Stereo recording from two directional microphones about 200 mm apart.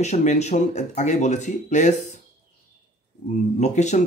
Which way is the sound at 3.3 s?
35° left (ahead or behind).